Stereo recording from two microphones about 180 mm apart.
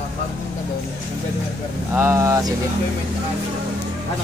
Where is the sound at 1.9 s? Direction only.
15° right (ahead or behind).